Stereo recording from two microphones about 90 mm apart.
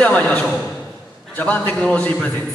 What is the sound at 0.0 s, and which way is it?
A man's voice, 15° left (ahead or behind).